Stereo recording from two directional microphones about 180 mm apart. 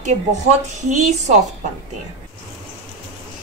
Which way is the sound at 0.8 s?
40° right (ahead or behind).